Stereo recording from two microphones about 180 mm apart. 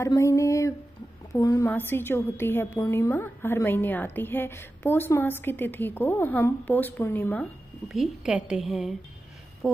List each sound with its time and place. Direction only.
0.0 s a sound: 15° left (ahead or behind)
1.3 s a woman's voice: 20° left (ahead or behind)
7.9 s a woman's voice: 5° right (ahead or behind)